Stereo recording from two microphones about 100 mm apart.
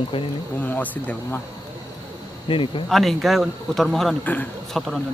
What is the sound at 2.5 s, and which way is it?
Speech, 60° left (ahead or behind).